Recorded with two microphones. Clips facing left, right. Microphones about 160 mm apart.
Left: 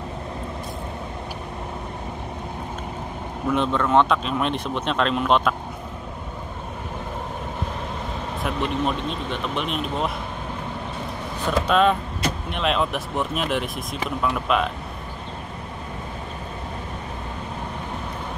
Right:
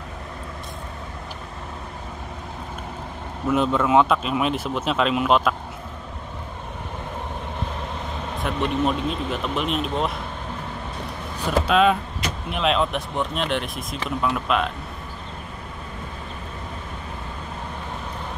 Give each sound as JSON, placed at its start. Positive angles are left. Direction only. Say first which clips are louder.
{"t": 3.4, "sound": "speech", "louder": "right 2 dB", "side_deg": -5}
{"t": 8.4, "sound": "speech", "louder": "right 2 dB", "side_deg": 0}
{"t": 11.6, "sound": "speech", "louder": "right 1 dB", "side_deg": -5}